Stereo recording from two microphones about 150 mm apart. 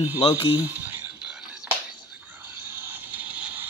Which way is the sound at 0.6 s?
10° right (ahead or behind).